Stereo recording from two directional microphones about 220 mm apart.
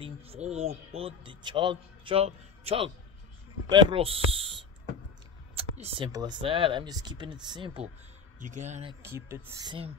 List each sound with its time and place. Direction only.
0.0 s a man's voice: 25° right (ahead or behind)
4.3 s owl: 25° right (ahead or behind)
5.6 s speech: 25° right (ahead or behind)
8.4 s speech: 35° right (ahead or behind)
9.0 s speech: 10° right (ahead or behind)